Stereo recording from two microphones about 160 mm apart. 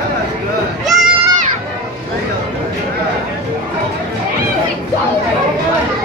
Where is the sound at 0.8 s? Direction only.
Centre (ahead or behind).